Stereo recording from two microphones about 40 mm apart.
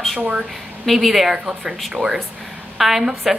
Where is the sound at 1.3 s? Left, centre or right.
Centre.